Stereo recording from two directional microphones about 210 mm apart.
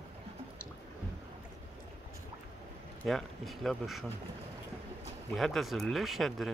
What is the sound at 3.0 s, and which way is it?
Speech, centre (ahead or behind).